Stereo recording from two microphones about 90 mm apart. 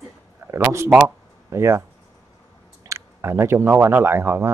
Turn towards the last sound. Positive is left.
turn(degrees=-25)  # may be behind; listen again after turning